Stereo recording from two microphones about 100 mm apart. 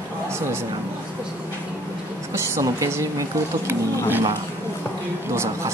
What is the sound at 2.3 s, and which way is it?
A woman's voice, 25° right (ahead or behind).